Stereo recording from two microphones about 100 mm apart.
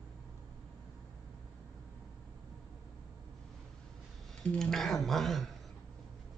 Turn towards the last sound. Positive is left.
turn(degrees=0)  # may be behind; listen again after turning